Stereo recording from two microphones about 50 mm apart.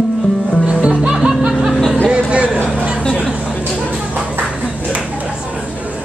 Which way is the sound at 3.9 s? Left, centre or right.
Centre.